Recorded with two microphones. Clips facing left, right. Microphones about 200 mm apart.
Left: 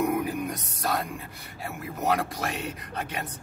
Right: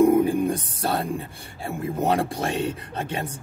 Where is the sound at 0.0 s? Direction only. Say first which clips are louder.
Right 9 dB; 30° right (ahead or behind).